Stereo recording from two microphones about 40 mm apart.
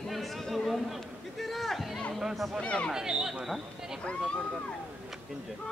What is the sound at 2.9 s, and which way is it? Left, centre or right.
Speech, centre.